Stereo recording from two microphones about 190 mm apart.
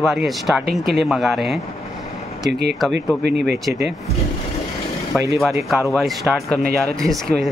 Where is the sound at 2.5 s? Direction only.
60° right (ahead or behind).